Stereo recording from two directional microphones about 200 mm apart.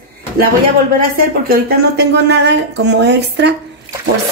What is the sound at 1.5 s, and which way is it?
Speech, 55° right (ahead or behind).